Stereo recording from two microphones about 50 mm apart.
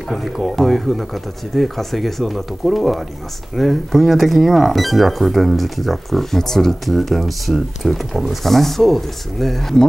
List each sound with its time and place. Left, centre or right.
0.1 s speech: centre